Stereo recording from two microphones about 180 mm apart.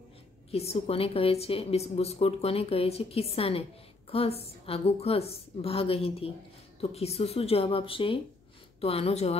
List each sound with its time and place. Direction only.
0.5 s a woman's voice: 35° left (ahead or behind)